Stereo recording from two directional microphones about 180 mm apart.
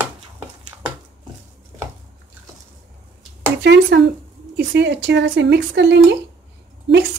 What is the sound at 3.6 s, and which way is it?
A woman's voice, 75° right (ahead or behind).